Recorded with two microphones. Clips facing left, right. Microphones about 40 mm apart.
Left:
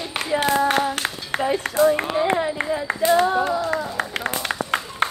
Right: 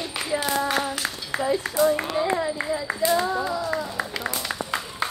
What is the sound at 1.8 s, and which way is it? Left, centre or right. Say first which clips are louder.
Speech: left 4 dB; left.